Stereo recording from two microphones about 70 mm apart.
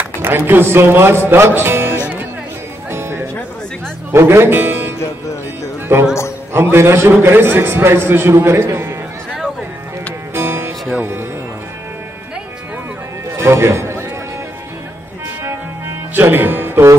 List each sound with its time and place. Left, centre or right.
0.0 s speech: right
2.9 s music: right
4.1 s speech: right
6.5 s a man's voice: right
10.3 s music: right
13.4 s a man's voice: right
16.2 s speech: right